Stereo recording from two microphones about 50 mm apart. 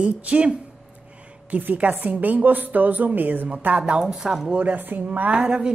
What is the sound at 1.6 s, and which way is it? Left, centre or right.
A woman's voice, right.